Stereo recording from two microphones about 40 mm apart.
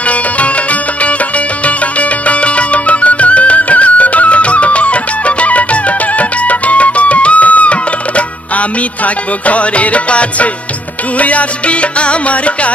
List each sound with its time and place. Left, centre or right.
2.0 s music: left
9.0 s music: left